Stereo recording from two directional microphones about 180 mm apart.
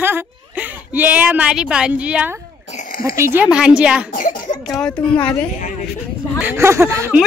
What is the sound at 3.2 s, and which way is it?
Speech, 10° right (ahead or behind).